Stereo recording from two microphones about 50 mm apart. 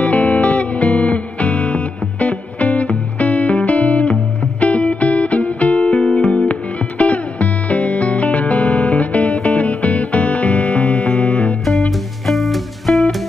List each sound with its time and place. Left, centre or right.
0.0 s music: left
5.9 s music: centre
6.2 s music: left
10.6 s music: centre